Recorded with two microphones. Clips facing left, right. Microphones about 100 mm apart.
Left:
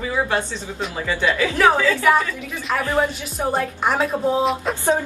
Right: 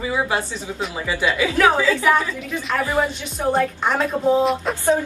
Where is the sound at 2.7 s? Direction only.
5° left (ahead or behind).